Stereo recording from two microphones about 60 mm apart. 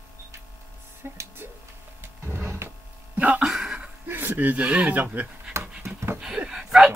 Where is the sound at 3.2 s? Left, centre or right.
Right.